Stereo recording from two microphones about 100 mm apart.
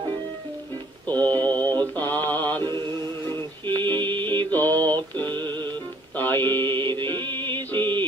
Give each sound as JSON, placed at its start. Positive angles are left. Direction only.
{"t": 1.0, "sound": "music", "side_deg": 15}
{"t": 2.0, "sound": "mantra", "side_deg": 20}
{"t": 3.8, "sound": "music", "side_deg": -50}
{"t": 4.5, "sound": "mantra", "side_deg": 20}
{"t": 5.5, "sound": "music", "side_deg": -50}
{"t": 6.1, "sound": "music", "side_deg": 20}
{"t": 6.6, "sound": "music", "side_deg": -50}